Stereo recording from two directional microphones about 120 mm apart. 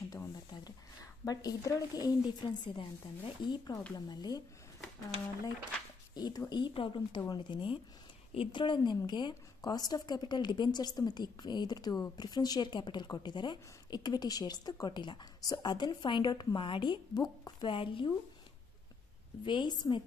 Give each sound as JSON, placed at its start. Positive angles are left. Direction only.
{"t": 1.2, "sound": "a woman's voice", "side_deg": 30}
{"t": 6.1, "sound": "a woman's voice", "side_deg": 35}
{"t": 6.5, "sound": "a woman's voice", "side_deg": 45}
{"t": 19.4, "sound": "a woman's voice", "side_deg": 40}